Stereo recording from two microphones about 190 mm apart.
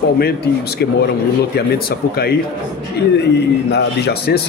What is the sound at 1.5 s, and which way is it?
A man's voice, 55° left (ahead or behind).